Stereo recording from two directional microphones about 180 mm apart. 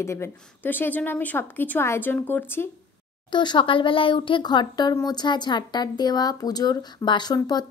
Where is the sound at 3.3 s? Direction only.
25° left (ahead or behind).